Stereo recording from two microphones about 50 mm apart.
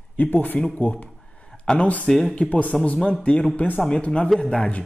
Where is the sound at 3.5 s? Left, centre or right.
Left.